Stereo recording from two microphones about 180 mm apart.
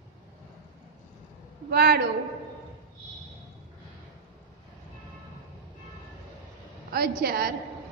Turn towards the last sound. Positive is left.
turn(degrees=-60)  # may be behind; listen again after turning